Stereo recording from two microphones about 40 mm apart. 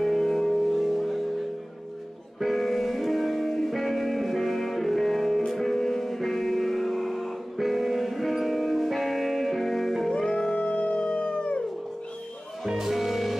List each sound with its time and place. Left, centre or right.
0.0 s music: centre
2.4 s music: centre
10.1 s music: centre
10.5 s howl: left
12.6 s music: centre